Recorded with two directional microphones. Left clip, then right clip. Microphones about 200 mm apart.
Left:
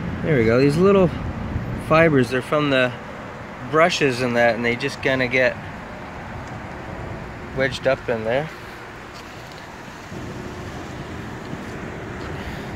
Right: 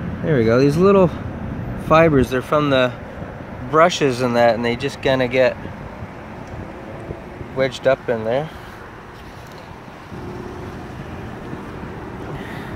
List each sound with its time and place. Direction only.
0.3 s speech: 5° right (ahead or behind)
7.5 s speech: 10° right (ahead or behind)